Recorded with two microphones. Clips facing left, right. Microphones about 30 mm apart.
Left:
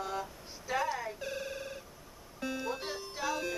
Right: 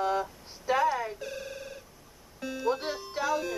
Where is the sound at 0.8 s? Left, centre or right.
Centre.